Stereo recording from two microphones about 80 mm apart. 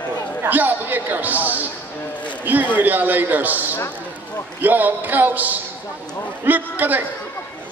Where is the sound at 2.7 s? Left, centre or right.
Right.